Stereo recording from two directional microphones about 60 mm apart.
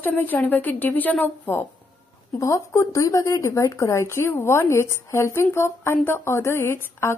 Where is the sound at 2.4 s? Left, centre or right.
Left.